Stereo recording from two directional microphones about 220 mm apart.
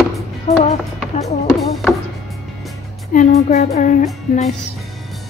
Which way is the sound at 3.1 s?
35° left (ahead or behind).